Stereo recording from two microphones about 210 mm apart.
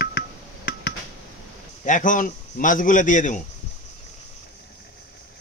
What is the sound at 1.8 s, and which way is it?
A man's voice, 40° left (ahead or behind).